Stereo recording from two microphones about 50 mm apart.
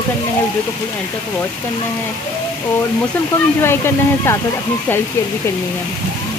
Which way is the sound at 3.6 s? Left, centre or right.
Left.